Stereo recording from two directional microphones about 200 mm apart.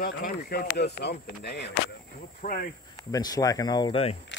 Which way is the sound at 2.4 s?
45° left (ahead or behind).